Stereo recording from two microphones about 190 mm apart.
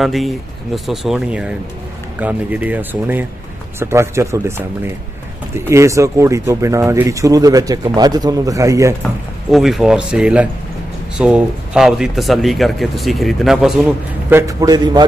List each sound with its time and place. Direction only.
0.0 s speech: centre (ahead or behind); by 8.9 s 15° right (ahead or behind)
9.5 s speech: centre (ahead or behind)
14.4 s speech: 15° right (ahead or behind)